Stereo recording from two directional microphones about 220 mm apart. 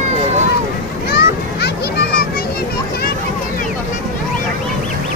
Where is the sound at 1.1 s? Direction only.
45° left (ahead or behind).